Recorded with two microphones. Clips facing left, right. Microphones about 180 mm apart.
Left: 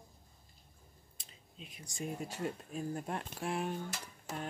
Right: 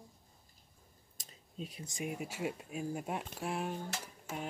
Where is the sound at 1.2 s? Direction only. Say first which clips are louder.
Right 9 dB; 40° right (ahead or behind).